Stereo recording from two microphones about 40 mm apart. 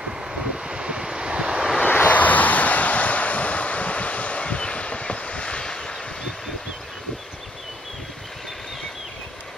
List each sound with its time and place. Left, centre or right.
0.0 s vehicle: right
1.9 s vehicle: left